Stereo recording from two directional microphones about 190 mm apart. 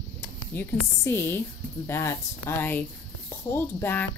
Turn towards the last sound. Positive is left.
turn(degrees=10)  # may be behind; listen again after turning